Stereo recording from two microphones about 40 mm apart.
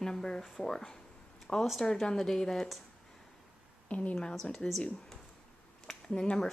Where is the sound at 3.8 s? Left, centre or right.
Left.